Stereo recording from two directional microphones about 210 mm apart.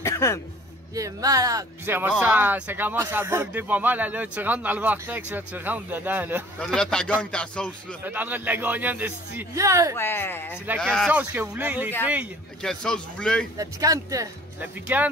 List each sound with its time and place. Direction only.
0.0 s music: 15° left (ahead or behind)
0.9 s speech: 15° right (ahead or behind)
6.6 s speech: centre (ahead or behind)
8.0 s speech: 10° right (ahead or behind)
9.9 s speech: 10° left (ahead or behind)
11.1 s speech: 10° right (ahead or behind)
12.8 s speech: 5° left (ahead or behind)
13.6 s speech: 15° right (ahead or behind)